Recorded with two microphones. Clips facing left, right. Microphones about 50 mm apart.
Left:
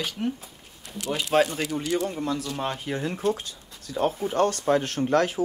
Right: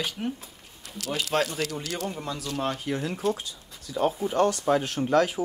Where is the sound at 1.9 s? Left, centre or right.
Left.